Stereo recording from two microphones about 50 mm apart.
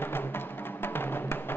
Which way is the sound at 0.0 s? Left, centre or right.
Left.